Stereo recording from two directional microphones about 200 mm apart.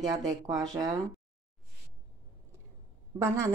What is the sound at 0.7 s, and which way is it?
Speech, 15° right (ahead or behind).